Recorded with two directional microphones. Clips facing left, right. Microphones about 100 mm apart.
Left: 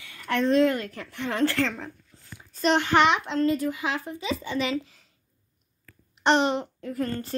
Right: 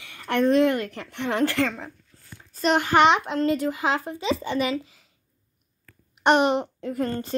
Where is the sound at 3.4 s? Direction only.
85° right.